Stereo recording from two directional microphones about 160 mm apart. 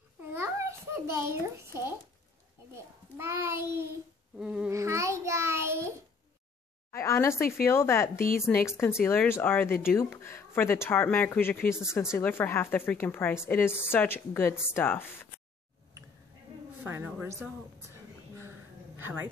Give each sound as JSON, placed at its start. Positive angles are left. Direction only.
{"t": 0.3, "sound": "a child's voice", "side_deg": -15}
{"t": 4.4, "sound": "babbling", "side_deg": -5}
{"t": 4.6, "sound": "a child's voice", "side_deg": -20}
{"t": 6.9, "sound": "speech", "side_deg": 15}
{"t": 16.8, "sound": "a child's voice", "side_deg": -15}